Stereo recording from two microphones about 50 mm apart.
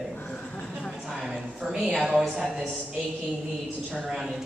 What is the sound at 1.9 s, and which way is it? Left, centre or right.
Speech, centre.